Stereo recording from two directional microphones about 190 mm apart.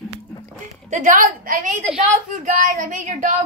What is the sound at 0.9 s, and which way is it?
A woman's voice, 40° right (ahead or behind).